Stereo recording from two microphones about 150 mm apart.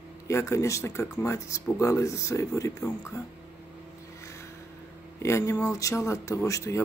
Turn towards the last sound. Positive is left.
turn(degrees=20)  # may be behind; listen again after turning